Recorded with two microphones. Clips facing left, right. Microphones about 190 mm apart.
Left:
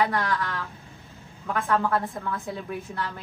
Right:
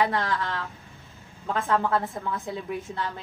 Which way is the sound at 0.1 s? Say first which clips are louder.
Even; 25° right (ahead or behind).